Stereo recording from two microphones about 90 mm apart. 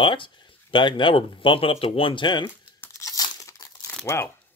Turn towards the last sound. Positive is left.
turn(degrees=30)  # may be behind; listen again after turning